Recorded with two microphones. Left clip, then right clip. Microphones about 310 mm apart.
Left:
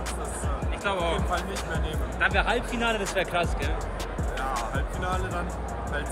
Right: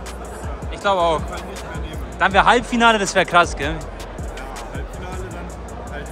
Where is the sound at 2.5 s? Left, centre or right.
Right.